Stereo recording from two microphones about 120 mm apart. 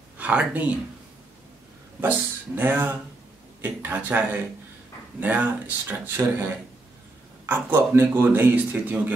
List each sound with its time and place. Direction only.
0.2 s speech: 10° right (ahead or behind)
2.0 s a man's voice: 15° right (ahead or behind)
7.4 s a man's voice: 20° right (ahead or behind)